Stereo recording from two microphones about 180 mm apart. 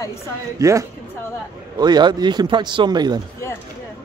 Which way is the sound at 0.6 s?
15° right (ahead or behind).